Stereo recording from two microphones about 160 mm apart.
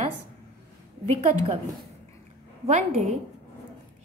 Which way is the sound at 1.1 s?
40° right (ahead or behind).